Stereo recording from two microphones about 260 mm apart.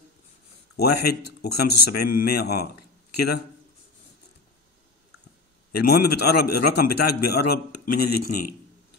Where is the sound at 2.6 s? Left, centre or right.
Left.